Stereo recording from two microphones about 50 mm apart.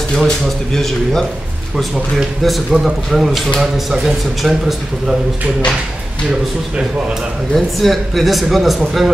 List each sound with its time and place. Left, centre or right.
1.8 s a man's voice: centre
7.5 s a man's voice: centre